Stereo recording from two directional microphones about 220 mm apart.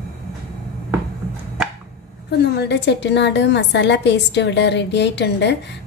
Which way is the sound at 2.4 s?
50° left (ahead or behind).